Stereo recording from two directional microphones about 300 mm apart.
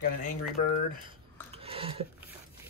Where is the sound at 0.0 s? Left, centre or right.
Left.